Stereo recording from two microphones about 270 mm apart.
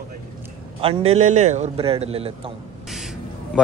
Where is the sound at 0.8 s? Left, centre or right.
Right.